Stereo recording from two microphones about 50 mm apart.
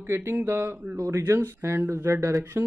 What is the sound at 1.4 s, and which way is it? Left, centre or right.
Speech, right.